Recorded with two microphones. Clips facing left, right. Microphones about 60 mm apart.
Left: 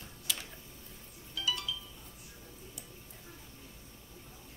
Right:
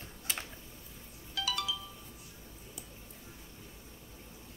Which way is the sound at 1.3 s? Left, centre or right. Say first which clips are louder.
Right 1 dB; right.